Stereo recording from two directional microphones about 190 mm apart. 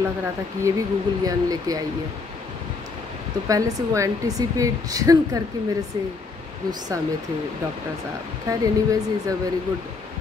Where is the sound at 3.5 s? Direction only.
15° right (ahead or behind).